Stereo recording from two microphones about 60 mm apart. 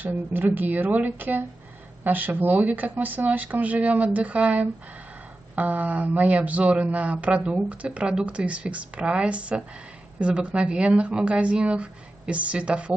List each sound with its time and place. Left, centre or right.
0.0 s speech: right